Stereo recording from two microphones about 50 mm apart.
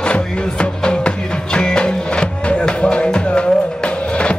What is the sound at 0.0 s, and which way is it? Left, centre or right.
Music, centre.